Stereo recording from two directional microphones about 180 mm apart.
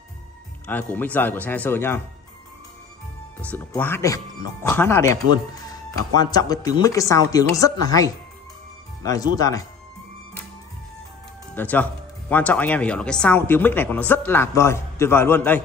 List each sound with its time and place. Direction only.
0.7 s speech: 10° left (ahead or behind)
3.3 s speech: 10° left (ahead or behind)
11.5 s speech: 10° left (ahead or behind)